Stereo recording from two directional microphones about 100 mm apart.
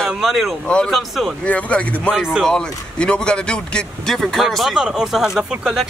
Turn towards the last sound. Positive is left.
turn(degrees=-5)  # may be behind; listen again after turning